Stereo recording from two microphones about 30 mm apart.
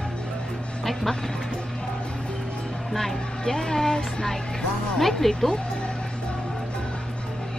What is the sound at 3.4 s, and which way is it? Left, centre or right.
Speech, left.